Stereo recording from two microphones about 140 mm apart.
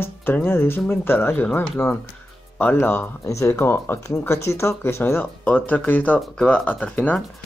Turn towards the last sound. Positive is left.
turn(degrees=10)  # may be behind; listen again after turning